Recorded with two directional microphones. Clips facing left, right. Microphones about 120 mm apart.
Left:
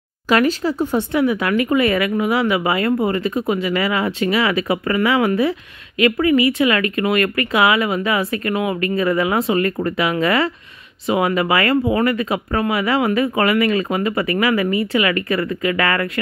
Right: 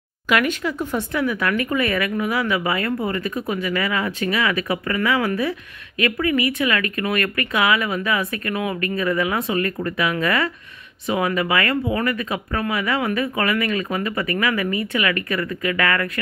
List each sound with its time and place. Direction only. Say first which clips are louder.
0.3 s speech: left 4 dB; 35° left (ahead or behind)